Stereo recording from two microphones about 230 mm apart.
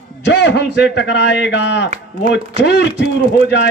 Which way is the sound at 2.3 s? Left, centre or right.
Left.